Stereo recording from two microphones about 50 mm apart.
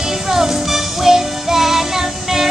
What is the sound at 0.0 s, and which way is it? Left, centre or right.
Music, centre.